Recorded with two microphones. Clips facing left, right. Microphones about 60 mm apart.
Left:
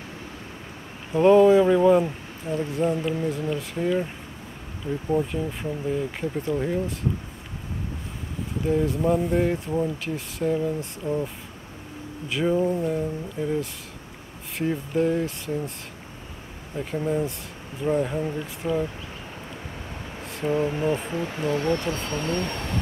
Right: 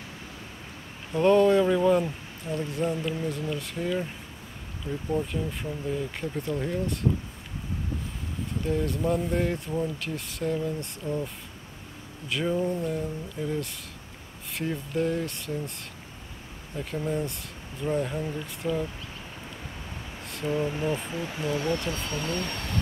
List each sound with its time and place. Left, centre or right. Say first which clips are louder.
1.1 s speech: left 5 dB; centre
5.1 s speech: left 4 dB; centre
8.5 s speech: left 5 dB; centre
12.3 s speech: left 4 dB; centre
16.7 s speech: left 4 dB; centre
20.4 s speech: left 4 dB; centre
21.1 s speech: left 4 dB; left
21.7 s speech: left 3 dB; centre